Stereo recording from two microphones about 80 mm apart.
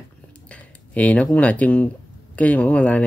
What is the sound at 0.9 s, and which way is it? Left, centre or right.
Speech, centre.